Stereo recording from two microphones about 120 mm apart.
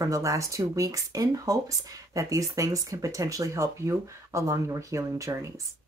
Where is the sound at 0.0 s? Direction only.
25° right (ahead or behind).